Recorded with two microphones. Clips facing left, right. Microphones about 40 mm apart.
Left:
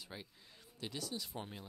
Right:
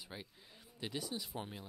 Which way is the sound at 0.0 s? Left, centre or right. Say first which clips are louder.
Right 1 dB; centre.